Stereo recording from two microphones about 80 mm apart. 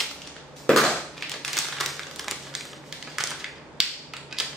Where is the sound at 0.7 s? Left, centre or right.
Centre.